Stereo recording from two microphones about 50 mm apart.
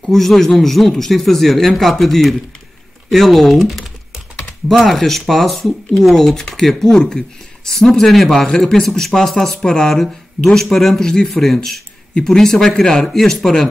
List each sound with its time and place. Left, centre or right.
0.1 s speech: centre
12.1 s speech: centre